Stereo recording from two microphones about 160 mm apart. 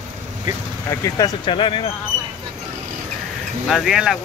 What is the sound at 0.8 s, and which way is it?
Speech, 20° left (ahead or behind).